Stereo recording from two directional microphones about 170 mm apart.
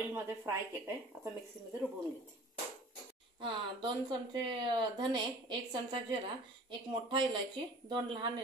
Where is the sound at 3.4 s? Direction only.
30° right (ahead or behind).